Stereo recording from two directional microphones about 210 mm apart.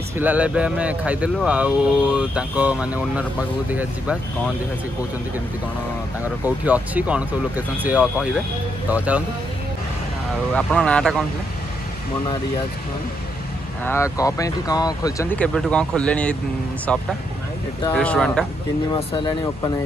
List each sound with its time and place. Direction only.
0.2 s speech: 5° right (ahead or behind)
6.2 s speech: 10° right (ahead or behind)
10.5 s speech: 5° left (ahead or behind)
13.8 s speech: 15° left (ahead or behind)
17.9 s speech: 5° left (ahead or behind)
18.9 s speech: 20° left (ahead or behind)